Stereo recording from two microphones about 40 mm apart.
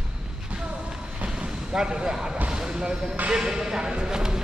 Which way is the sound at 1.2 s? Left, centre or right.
Right.